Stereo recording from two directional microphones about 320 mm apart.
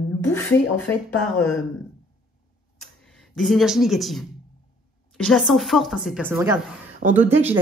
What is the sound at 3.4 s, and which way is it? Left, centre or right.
A woman's voice, centre.